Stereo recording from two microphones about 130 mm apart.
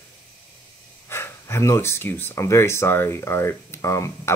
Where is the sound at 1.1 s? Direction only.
20° left (ahead or behind).